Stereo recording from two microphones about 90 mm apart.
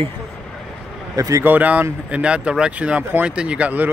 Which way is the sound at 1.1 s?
40° right (ahead or behind).